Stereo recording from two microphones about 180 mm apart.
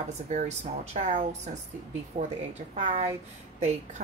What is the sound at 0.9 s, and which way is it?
Speech, 45° right (ahead or behind).